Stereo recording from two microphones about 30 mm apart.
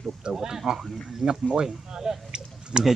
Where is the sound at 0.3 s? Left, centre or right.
Centre.